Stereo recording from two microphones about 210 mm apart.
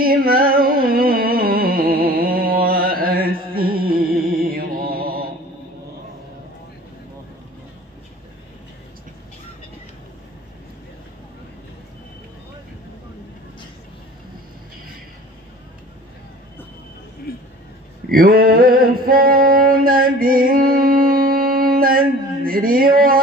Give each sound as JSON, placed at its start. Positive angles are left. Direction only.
{"t": 0.0, "sound": "music", "side_deg": -45}
{"t": 17.3, "sound": "vehicle", "side_deg": 45}
{"t": 18.1, "sound": "a sound", "side_deg": -45}